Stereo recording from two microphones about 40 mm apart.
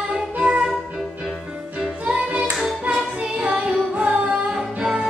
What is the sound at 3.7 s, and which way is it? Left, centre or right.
Music, right.